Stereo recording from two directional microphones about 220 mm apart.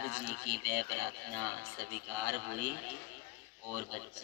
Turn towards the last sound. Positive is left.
turn(degrees=-40)  # may be behind; listen again after turning